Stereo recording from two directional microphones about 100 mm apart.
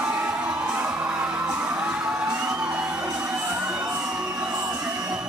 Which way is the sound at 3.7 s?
10° right (ahead or behind).